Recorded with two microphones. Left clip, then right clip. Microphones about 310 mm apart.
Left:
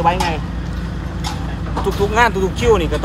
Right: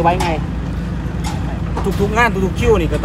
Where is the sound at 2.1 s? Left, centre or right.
Left.